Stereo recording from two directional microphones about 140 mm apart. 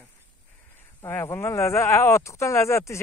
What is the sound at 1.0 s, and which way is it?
Speech, 15° left (ahead or behind).